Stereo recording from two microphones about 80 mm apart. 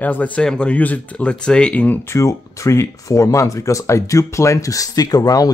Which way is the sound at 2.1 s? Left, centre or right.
Left.